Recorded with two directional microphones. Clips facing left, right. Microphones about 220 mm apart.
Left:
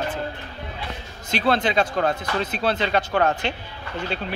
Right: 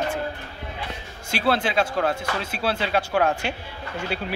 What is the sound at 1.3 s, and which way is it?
Speech, 5° right (ahead or behind).